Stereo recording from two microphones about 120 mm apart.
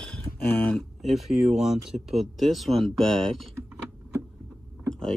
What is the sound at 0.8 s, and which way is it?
Speech, centre (ahead or behind).